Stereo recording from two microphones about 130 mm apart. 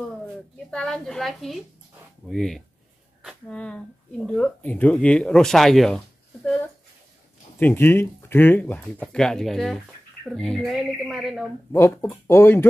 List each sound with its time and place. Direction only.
0.7 s a woman's voice: 5° left (ahead or behind)
11.7 s speech: 20° left (ahead or behind)